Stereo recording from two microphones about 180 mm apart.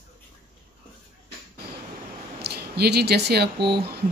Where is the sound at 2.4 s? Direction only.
65° right (ahead or behind).